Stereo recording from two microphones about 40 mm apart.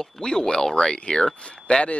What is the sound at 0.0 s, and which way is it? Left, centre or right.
Speech, centre.